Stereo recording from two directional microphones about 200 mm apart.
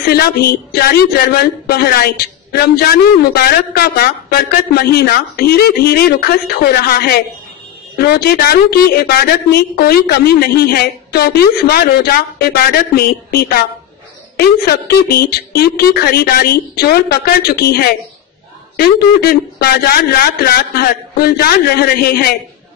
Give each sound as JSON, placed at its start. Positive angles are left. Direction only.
{"t": 0.0, "sound": "speech", "side_deg": 50}